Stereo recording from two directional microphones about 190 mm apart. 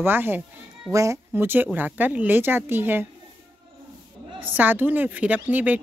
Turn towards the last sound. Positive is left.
turn(degrees=-10)  # may be behind; listen again after turning